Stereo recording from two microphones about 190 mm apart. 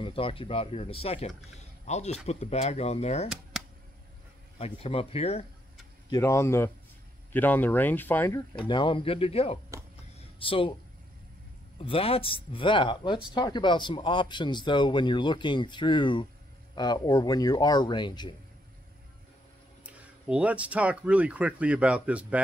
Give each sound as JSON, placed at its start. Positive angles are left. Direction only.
{"t": 0.0, "sound": "speech", "side_deg": 30}
{"t": 4.6, "sound": "speech", "side_deg": 35}
{"t": 6.0, "sound": "speech", "side_deg": 15}
{"t": 11.8, "sound": "speech", "side_deg": 30}
{"t": 19.8, "sound": "speech", "side_deg": -5}